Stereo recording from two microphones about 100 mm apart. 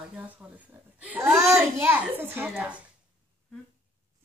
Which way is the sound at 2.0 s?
20° right (ahead or behind).